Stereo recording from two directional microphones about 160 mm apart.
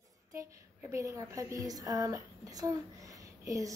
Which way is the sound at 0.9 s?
20° right (ahead or behind).